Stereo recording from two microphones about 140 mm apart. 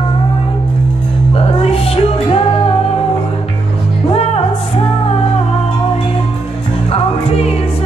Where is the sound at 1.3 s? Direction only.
45° left (ahead or behind).